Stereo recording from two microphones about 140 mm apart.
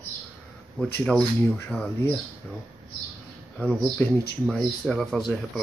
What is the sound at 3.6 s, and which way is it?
Speech, 10° left (ahead or behind).